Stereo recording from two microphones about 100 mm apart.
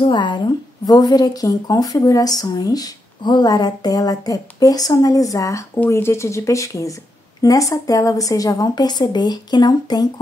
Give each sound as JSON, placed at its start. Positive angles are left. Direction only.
{"t": 0.0, "sound": "a woman's voice", "side_deg": 50}